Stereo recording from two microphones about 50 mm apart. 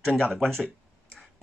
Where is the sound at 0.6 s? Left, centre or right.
Left.